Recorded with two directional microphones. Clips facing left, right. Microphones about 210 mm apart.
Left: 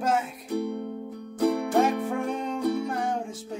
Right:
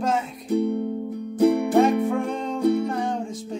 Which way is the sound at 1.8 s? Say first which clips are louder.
Right 4 dB; 5° left (ahead or behind).